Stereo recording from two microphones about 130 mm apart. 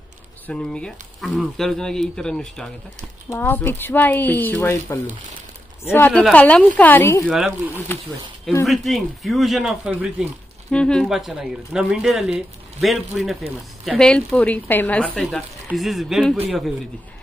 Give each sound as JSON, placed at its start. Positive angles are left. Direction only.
{"t": 0.5, "sound": "speech", "side_deg": 5}
{"t": 3.3, "sound": "speech", "side_deg": 15}
{"t": 7.2, "sound": "speech", "side_deg": 0}
{"t": 8.6, "sound": "speech", "side_deg": 0}
{"t": 10.7, "sound": "speech", "side_deg": 5}